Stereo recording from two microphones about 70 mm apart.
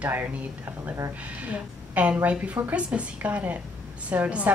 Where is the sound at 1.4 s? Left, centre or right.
Right.